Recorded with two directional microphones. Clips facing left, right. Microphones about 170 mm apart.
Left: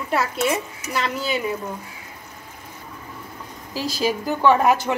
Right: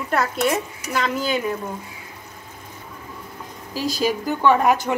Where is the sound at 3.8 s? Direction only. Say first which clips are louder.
Right 1 dB; 45° right (ahead or behind).